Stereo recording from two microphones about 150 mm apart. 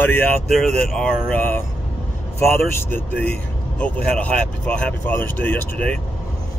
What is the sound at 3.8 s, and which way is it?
Speech, 10° left (ahead or behind).